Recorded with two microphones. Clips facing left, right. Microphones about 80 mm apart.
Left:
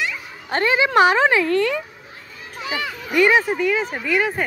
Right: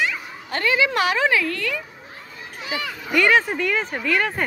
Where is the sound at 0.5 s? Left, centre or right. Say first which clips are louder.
Left 2 dB; left.